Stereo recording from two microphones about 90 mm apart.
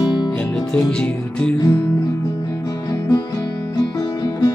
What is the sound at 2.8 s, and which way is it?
Music, 40° left (ahead or behind).